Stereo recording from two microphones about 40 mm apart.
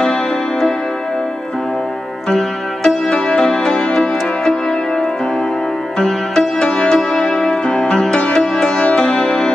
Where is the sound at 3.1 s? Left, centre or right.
Left.